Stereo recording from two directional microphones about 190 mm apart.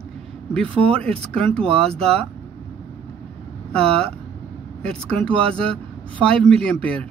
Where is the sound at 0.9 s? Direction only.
5° left (ahead or behind).